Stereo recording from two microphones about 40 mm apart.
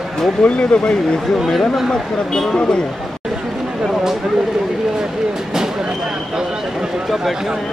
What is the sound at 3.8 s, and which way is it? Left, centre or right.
Speech, centre.